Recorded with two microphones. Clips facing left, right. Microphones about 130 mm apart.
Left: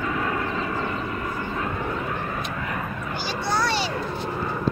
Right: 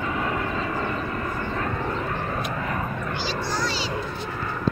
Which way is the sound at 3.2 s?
60° left (ahead or behind).